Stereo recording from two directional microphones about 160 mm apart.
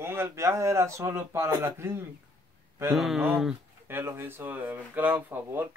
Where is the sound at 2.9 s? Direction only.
Centre (ahead or behind).